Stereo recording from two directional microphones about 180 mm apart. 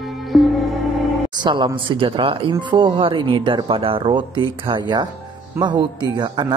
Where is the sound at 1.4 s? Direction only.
25° right (ahead or behind).